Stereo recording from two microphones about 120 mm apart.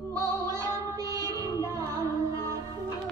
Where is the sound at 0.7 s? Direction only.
25° right (ahead or behind).